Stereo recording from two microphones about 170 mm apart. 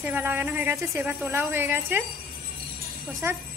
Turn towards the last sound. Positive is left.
turn(degrees=-15)  # may be behind; listen again after turning